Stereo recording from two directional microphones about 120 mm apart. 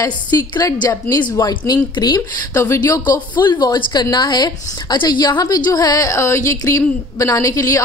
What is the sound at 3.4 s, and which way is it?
A woman's voice, 40° left (ahead or behind).